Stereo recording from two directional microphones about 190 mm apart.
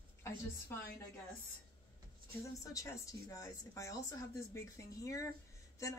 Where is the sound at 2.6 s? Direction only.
15° left (ahead or behind).